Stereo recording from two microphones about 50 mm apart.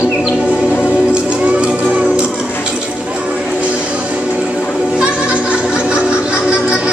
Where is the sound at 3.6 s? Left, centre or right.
Right.